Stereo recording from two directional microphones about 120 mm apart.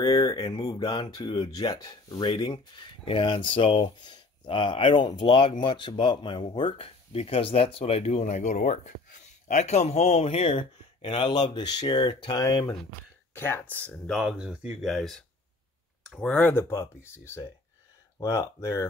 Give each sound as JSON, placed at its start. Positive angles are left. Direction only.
{"t": 0.0, "sound": "speech", "side_deg": 35}
{"t": 9.5, "sound": "speech", "side_deg": 70}
{"t": 13.3, "sound": "speech", "side_deg": 20}
{"t": 14.2, "sound": "speech", "side_deg": -10}
{"t": 18.2, "sound": "speech", "side_deg": 30}